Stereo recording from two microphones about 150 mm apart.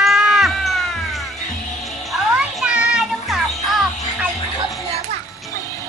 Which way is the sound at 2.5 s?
5° right (ahead or behind).